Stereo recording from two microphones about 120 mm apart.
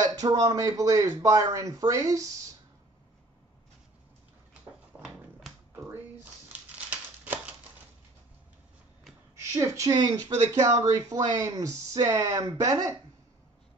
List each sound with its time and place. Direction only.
0.1 s speech: 30° right (ahead or behind)
4.9 s a sound: 10° right (ahead or behind)
6.9 s crumpling: 10° right (ahead or behind)
9.3 s a woman's voice: 25° right (ahead or behind)